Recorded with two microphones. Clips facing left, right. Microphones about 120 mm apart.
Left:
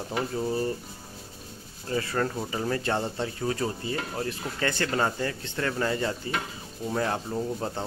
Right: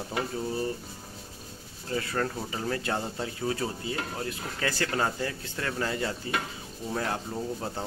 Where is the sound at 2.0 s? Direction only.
5° left (ahead or behind).